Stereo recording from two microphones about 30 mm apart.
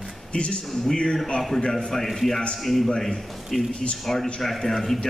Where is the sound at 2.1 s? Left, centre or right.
Centre.